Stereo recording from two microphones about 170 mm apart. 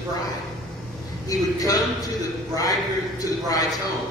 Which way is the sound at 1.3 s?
20° left (ahead or behind).